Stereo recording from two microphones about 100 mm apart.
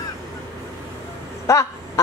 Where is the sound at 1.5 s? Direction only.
30° left (ahead or behind).